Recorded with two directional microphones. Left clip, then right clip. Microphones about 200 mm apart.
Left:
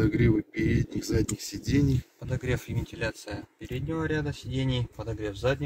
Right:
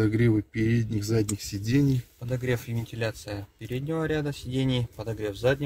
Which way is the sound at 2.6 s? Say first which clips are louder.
Right 1 dB; 45° right (ahead or behind).